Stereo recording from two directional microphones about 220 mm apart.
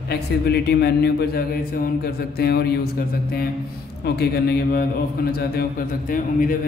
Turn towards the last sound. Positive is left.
turn(degrees=40)  # may be behind; listen again after turning